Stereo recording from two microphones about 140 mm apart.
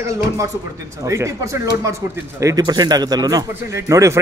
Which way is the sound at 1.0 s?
20° right (ahead or behind).